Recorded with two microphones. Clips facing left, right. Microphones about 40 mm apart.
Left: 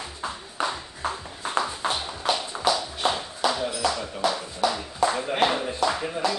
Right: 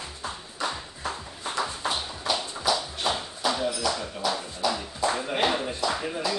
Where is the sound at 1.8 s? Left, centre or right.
Left.